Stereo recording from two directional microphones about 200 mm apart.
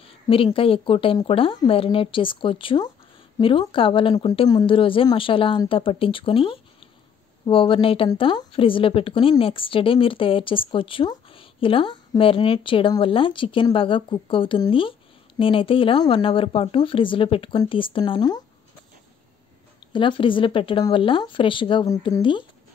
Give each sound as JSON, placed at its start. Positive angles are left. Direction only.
{"t": 0.0, "sound": "a woman's voice", "side_deg": 25}
{"t": 19.9, "sound": "a woman's voice", "side_deg": 25}